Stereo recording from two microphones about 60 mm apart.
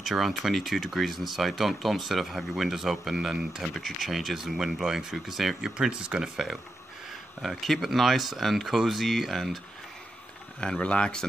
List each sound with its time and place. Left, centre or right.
0.0 s speech: centre
10.6 s speech: centre